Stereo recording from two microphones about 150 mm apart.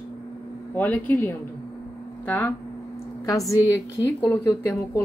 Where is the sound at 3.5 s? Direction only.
20° left (ahead or behind).